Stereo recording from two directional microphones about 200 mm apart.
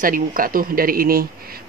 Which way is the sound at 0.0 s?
45° right (ahead or behind).